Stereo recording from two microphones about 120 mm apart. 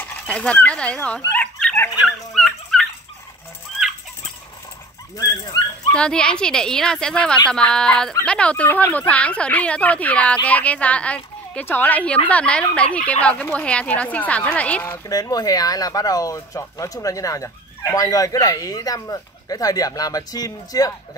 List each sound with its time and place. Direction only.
0.0 s speech: 10° left (ahead or behind)
1.3 s dog: 10° left (ahead or behind)
5.1 s speech: 30° left (ahead or behind)
5.9 s speech: 10° left (ahead or behind)
15.0 s speech: 30° left (ahead or behind)